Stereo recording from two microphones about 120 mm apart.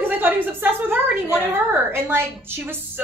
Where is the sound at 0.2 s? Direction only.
15° right (ahead or behind).